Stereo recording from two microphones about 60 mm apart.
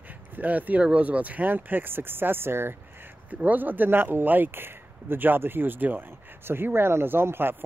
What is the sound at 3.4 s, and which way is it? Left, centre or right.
Speech, right.